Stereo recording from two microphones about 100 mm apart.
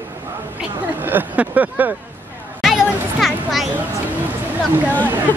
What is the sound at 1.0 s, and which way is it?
Speech, 20° right (ahead or behind).